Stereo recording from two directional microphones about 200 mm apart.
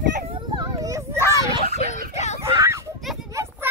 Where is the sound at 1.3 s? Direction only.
15° right (ahead or behind).